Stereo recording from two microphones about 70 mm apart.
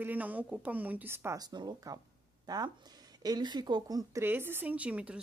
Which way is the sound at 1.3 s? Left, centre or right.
Right.